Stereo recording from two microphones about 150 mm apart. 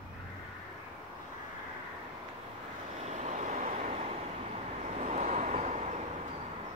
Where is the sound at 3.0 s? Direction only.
50° right (ahead or behind).